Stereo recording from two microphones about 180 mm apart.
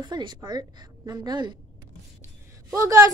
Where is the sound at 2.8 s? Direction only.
15° right (ahead or behind).